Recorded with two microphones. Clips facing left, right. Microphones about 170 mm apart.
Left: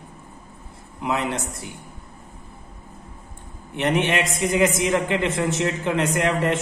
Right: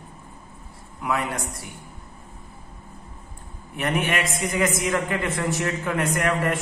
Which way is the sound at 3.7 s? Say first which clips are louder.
Left 3 dB; 25° left (ahead or behind).